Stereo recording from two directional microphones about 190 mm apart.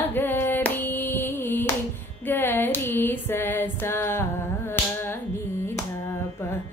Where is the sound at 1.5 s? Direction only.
10° left (ahead or behind).